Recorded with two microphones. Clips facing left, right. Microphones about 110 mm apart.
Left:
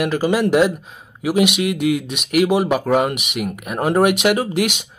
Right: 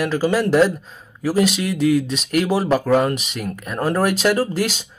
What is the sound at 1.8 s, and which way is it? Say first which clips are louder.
Speech: right 2 dB; 5° left (ahead or behind).